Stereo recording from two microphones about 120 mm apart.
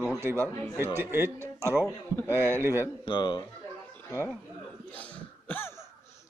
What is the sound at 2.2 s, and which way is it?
Speech, 20° left (ahead or behind).